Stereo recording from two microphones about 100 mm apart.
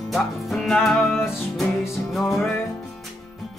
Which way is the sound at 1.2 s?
25° left (ahead or behind).